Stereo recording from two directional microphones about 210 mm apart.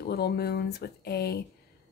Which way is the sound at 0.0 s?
50° left (ahead or behind).